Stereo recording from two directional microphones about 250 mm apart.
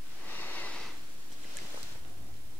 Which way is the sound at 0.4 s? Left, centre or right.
Centre.